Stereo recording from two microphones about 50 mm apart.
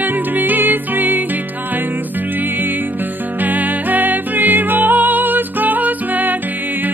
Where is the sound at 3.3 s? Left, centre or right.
Right.